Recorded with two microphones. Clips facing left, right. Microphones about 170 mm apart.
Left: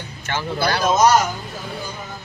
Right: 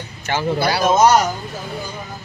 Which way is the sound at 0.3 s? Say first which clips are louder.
Right 3 dB; 10° right (ahead or behind).